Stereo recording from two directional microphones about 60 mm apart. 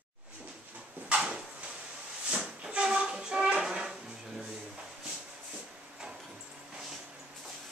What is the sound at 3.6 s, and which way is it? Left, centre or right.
Music, centre.